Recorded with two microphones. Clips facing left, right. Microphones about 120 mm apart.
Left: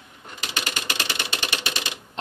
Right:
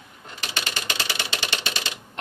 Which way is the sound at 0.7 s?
15° left (ahead or behind).